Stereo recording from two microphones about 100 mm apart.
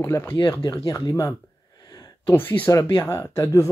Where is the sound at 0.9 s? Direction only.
35° left (ahead or behind).